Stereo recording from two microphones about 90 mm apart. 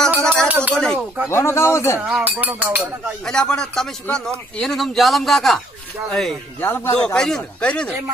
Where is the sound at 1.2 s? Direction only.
30° left (ahead or behind).